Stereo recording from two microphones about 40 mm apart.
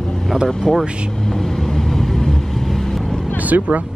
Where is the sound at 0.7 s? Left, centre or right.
Centre.